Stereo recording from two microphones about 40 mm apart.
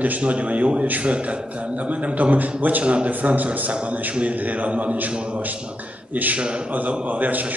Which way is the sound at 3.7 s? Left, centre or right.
Right.